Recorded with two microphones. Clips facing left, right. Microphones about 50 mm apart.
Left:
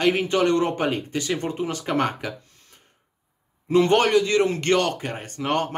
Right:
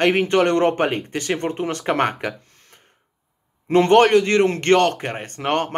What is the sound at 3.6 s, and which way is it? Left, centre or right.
Speech, right.